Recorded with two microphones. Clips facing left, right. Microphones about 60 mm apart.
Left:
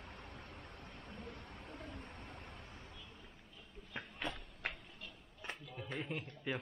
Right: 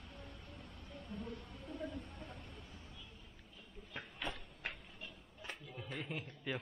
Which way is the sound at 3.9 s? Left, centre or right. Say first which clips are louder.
Left 1 dB; centre.